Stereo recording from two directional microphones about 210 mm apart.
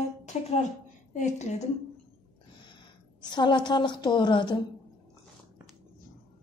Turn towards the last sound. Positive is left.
turn(degrees=20)  # may be behind; listen again after turning